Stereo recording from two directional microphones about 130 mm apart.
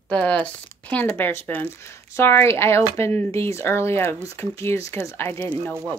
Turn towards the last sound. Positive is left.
turn(degrees=15)  # may be behind; listen again after turning